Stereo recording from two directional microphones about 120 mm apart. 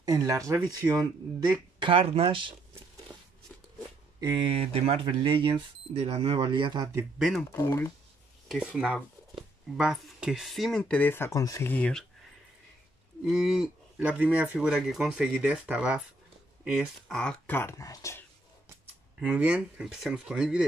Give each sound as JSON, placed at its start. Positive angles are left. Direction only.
{"t": 0.0, "sound": "speech", "side_deg": -30}
{"t": 1.8, "sound": "speech", "side_deg": -45}
{"t": 4.2, "sound": "speech", "side_deg": -40}
{"t": 7.2, "sound": "speech", "side_deg": 0}
{"t": 7.5, "sound": "speech", "side_deg": 25}
{"t": 8.5, "sound": "speech", "side_deg": -5}
{"t": 11.7, "sound": "speech", "side_deg": 5}
{"t": 13.2, "sound": "speech", "side_deg": -5}
{"t": 17.1, "sound": "speech", "side_deg": 5}
{"t": 17.5, "sound": "speech", "side_deg": 20}
{"t": 19.1, "sound": "speech", "side_deg": -10}